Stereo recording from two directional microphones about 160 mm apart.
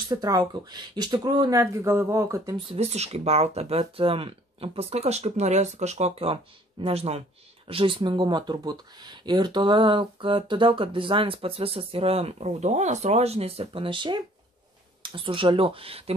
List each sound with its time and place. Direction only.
0.2 s speech: 25° right (ahead or behind)
2.7 s speech: 40° right (ahead or behind)